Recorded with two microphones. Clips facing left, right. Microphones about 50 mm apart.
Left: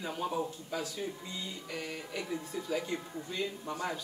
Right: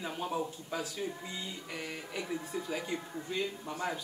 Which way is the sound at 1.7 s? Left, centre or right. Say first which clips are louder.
Left 2 dB; centre.